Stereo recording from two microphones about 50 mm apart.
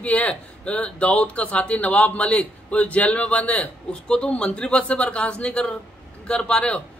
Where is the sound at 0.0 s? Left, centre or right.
Left.